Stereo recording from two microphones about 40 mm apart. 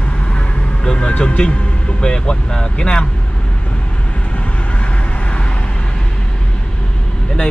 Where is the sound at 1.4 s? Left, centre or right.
Left.